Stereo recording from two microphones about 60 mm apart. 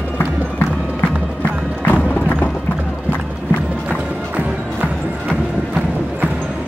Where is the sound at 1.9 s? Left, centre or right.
Left.